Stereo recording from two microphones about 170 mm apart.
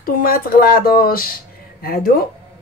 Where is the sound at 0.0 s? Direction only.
60° left (ahead or behind).